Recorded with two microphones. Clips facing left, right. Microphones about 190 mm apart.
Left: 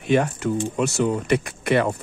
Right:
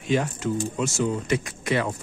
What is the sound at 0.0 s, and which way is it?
Speech, 60° left (ahead or behind).